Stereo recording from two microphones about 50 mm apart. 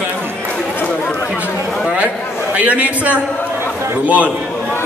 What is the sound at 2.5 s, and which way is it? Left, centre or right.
A man's voice, right.